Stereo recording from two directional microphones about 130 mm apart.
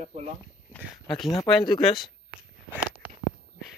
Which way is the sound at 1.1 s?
Centre (ahead or behind).